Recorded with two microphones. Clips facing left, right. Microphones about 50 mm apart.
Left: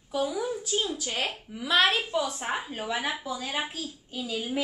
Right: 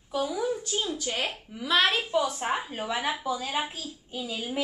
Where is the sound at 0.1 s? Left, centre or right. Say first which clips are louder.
Right 1 dB; centre.